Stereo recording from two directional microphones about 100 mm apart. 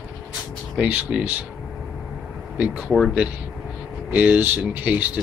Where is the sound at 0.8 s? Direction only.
15° right (ahead or behind).